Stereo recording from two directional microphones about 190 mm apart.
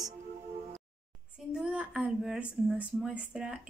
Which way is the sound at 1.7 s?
5° right (ahead or behind).